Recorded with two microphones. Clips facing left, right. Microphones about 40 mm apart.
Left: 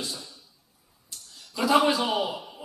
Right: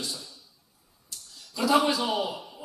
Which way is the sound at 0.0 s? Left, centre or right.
Centre.